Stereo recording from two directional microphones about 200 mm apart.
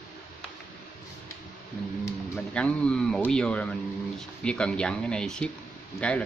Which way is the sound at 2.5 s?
5° left (ahead or behind).